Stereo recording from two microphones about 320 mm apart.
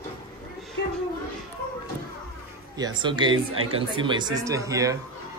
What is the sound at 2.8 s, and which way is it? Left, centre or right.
Speech, centre.